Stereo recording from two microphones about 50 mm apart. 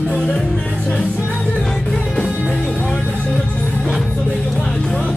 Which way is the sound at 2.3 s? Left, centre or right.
Left.